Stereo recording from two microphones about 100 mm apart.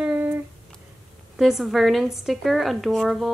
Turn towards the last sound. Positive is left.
turn(degrees=0)  # may be behind; listen again after turning